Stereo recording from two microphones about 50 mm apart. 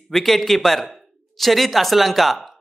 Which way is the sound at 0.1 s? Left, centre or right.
Centre.